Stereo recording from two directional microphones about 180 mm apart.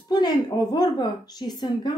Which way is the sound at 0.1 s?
20° left (ahead or behind).